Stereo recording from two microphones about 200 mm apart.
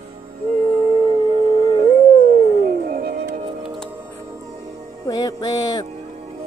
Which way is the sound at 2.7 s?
45° right (ahead or behind).